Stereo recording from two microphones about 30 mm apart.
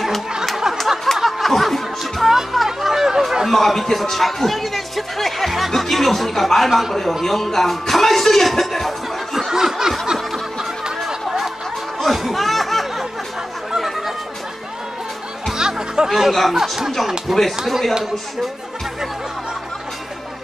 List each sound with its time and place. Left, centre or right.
1.1 s a sound: centre
1.5 s laughter: centre
2.2 s chatter: centre
6.9 s a man's voice: centre
7.2 s music: centre
9.5 s a sound: centre
10.3 s snicker: centre
12.0 s a sound: centre
13.7 s music: centre
15.5 s music: right
16.1 s speech: centre